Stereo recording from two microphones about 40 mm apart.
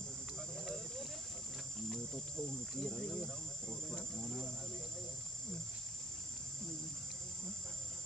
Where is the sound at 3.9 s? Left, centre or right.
Centre.